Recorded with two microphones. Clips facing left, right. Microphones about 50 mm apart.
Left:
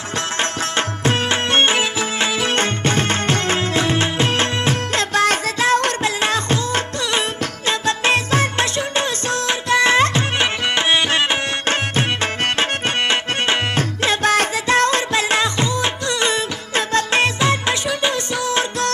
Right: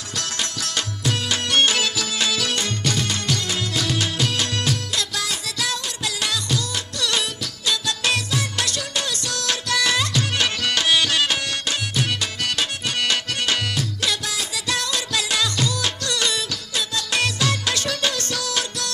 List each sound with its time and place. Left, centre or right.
0.4 s music: left